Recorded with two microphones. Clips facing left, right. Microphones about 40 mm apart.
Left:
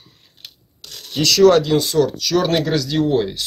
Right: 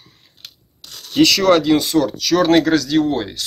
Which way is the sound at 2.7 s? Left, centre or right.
Centre.